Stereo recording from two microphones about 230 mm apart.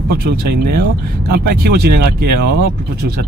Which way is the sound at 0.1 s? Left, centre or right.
Right.